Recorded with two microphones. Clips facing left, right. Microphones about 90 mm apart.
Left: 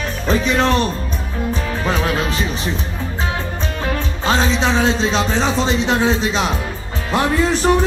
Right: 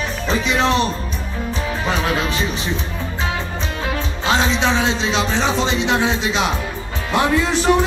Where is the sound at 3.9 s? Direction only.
40° left (ahead or behind).